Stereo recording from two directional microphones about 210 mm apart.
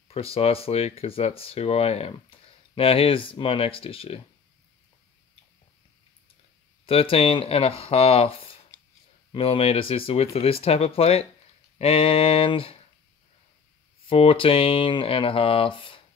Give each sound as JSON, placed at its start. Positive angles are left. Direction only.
{"t": 0.1, "sound": "speech", "side_deg": 30}
{"t": 6.9, "sound": "speech", "side_deg": 25}
{"t": 14.0, "sound": "speech", "side_deg": 25}